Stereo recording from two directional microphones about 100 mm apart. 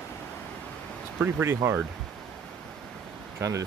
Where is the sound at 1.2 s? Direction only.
25° right (ahead or behind).